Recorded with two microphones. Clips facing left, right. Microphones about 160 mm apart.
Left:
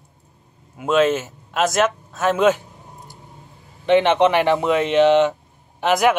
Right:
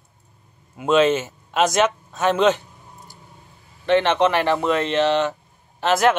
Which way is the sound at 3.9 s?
15° left (ahead or behind).